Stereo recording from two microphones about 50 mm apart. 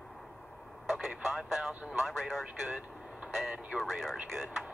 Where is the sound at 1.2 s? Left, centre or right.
Centre.